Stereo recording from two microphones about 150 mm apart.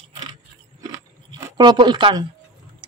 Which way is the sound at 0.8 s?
25° right (ahead or behind).